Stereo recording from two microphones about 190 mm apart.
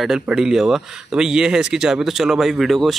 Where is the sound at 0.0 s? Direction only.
Centre (ahead or behind).